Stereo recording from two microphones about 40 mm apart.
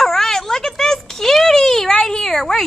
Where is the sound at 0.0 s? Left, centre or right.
Centre.